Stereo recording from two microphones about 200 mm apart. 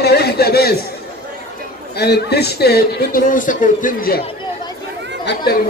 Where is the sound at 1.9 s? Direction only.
55° left (ahead or behind).